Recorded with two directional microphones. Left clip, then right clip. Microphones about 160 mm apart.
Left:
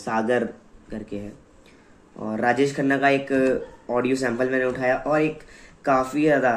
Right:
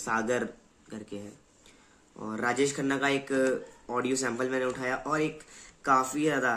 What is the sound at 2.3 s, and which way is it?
Speech, 20° right (ahead or behind).